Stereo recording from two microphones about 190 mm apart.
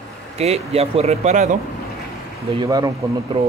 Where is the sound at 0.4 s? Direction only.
35° right (ahead or behind).